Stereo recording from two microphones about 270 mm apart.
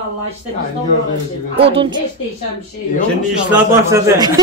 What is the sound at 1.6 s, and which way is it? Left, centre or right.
Speech, centre.